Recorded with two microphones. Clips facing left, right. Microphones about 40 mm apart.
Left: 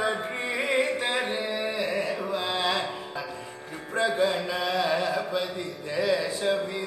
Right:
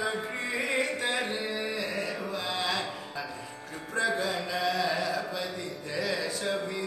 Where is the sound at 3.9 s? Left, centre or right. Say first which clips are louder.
Left 4 dB; left.